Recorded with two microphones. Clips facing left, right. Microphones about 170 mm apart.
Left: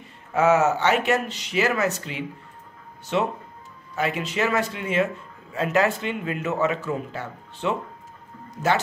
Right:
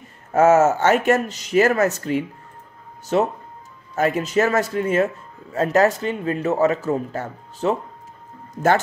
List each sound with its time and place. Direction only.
0.3 s speech: 45° right (ahead or behind)